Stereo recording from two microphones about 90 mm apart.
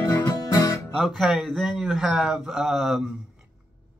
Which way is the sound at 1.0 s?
5° right (ahead or behind).